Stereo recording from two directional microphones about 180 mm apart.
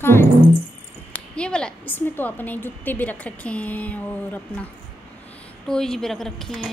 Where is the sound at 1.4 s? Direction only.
5° left (ahead or behind).